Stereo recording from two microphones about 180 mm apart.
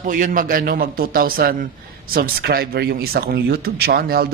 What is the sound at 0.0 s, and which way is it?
A man's voice, 45° right (ahead or behind).